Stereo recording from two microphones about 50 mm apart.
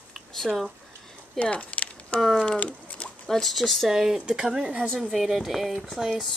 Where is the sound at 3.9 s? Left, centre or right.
Centre.